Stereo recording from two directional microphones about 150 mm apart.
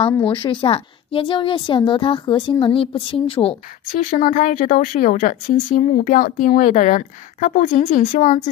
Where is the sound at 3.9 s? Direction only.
65° left (ahead or behind).